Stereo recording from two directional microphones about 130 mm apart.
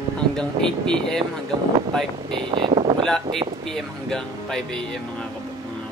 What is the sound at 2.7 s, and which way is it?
Wind noise, 55° right (ahead or behind).